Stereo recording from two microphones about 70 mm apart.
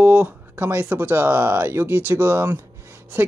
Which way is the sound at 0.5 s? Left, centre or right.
Right.